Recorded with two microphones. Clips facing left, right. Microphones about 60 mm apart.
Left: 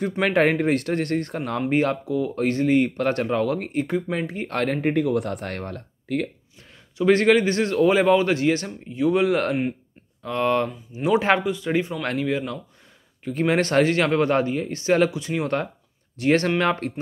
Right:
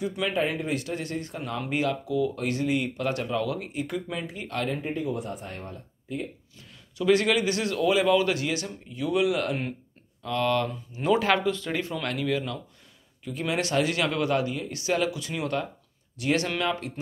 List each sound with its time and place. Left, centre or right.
0.2 s speech: left
1.7 s a man's voice: left
3.8 s speech: left
7.0 s a man's voice: left
10.2 s speech: left
13.2 s a man's voice: left